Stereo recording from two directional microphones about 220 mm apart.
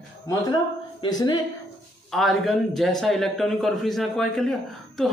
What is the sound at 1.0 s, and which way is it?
Speech, 20° left (ahead or behind).